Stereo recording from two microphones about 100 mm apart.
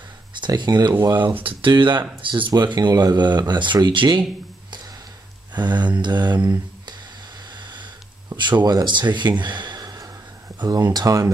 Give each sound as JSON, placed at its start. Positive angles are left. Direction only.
{"t": 0.6, "sound": "speech", "side_deg": -45}
{"t": 2.5, "sound": "speech", "side_deg": -45}
{"t": 5.5, "sound": "speech", "side_deg": -45}
{"t": 7.5, "sound": "a sound", "side_deg": -50}
{"t": 8.4, "sound": "speech", "side_deg": -50}
{"t": 9.4, "sound": "a sound", "side_deg": -50}
{"t": 10.6, "sound": "speech", "side_deg": -45}